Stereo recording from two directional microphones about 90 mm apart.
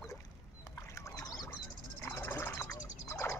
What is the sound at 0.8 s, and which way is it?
Boat, 35° left (ahead or behind).